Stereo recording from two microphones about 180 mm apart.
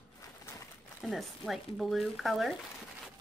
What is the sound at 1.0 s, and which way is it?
Speech, centre (ahead or behind).